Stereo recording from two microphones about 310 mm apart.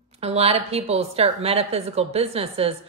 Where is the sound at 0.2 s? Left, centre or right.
Centre.